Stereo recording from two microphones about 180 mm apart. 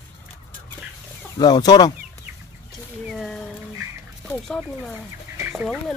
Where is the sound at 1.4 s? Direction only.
20° left (ahead or behind).